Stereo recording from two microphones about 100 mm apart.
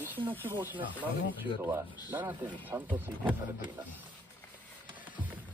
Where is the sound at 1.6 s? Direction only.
25° right (ahead or behind).